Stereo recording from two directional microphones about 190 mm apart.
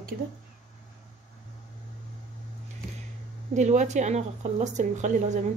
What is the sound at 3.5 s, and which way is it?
Speech, 40° right (ahead or behind).